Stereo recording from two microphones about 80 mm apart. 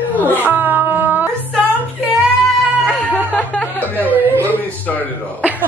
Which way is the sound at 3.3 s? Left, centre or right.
Centre.